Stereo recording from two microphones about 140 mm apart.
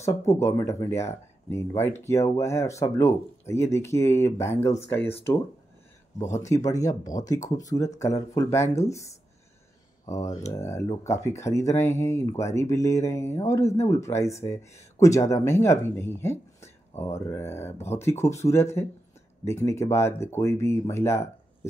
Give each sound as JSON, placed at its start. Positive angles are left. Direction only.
{"t": 0.0, "sound": "speech", "side_deg": 20}
{"t": 6.4, "sound": "speech", "side_deg": 25}